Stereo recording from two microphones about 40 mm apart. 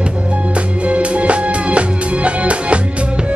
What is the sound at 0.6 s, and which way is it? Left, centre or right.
Music, right.